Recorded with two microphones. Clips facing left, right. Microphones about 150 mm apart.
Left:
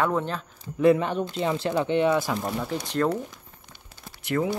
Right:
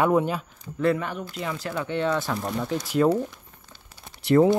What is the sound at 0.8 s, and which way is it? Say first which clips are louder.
Speech: left 4 dB; 20° left (ahead or behind).